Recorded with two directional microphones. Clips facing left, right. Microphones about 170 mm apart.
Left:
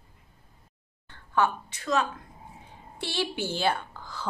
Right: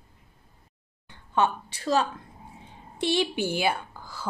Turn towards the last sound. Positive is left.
turn(degrees=-10)  # may be behind; listen again after turning